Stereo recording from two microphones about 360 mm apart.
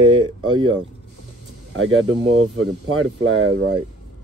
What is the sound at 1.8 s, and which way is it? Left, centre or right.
Speech, right.